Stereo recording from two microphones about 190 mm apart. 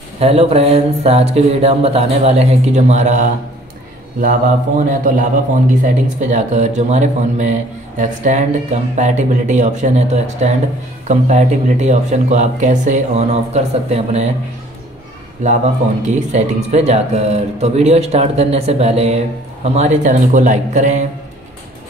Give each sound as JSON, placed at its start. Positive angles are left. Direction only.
{"t": 0.2, "sound": "a man's voice", "side_deg": -30}
{"t": 6.2, "sound": "speech", "side_deg": -40}
{"t": 15.4, "sound": "speech", "side_deg": -40}